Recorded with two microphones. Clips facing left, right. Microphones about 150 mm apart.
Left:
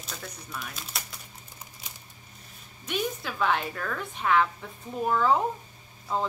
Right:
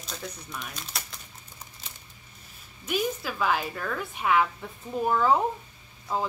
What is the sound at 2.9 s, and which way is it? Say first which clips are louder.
A woman's voice: right 2 dB; 5° right (ahead or behind).